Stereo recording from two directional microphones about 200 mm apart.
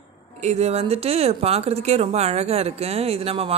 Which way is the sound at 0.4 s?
35° right (ahead or behind).